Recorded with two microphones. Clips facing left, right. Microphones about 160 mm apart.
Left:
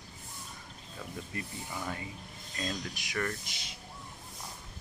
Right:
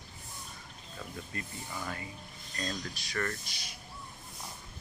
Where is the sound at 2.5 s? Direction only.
15° left (ahead or behind).